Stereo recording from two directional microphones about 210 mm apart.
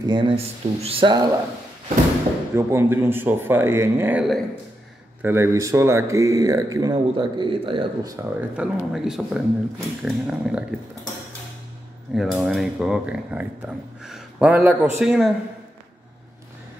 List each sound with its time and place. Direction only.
0.0 s speech: 25° right (ahead or behind)
2.5 s speech: 10° right (ahead or behind)
5.2 s speech: 10° right (ahead or behind)
8.2 s speech: 5° right (ahead or behind)
12.2 s speech: 5° right (ahead or behind)